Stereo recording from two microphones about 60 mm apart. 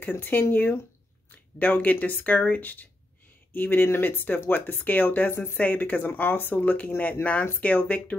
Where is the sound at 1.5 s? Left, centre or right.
Left.